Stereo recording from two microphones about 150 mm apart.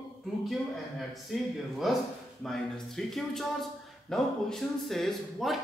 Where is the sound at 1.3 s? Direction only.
Centre (ahead or behind).